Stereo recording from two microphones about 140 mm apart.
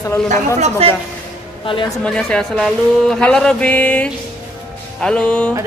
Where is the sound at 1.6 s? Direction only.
35° left (ahead or behind).